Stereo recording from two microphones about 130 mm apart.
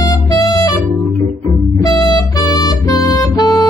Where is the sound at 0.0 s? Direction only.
30° left (ahead or behind).